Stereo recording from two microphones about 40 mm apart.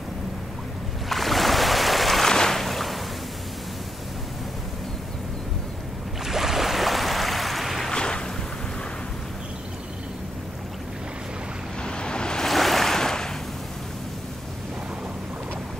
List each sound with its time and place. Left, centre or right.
1.0 s a sound: centre
2.3 s boat: centre
6.2 s boat: centre
7.9 s boat: left
11.8 s waves: left
12.4 s waves: centre